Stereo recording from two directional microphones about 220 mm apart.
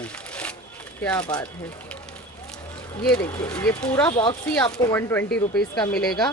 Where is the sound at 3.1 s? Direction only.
15° left (ahead or behind).